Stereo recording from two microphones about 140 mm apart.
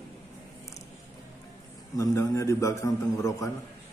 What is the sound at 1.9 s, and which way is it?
A man's voice, 20° left (ahead or behind).